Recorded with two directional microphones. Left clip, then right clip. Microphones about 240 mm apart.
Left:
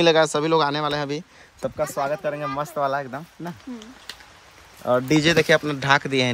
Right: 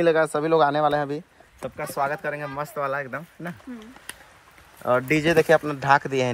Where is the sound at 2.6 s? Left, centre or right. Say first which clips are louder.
Left 3 dB; centre.